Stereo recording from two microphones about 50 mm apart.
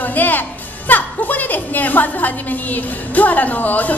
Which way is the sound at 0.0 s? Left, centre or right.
Left.